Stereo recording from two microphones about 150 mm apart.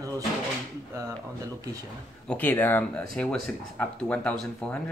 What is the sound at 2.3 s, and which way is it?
Speech, 10° left (ahead or behind).